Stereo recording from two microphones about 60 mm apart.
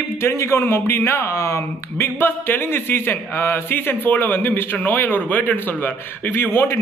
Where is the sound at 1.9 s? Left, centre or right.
Left.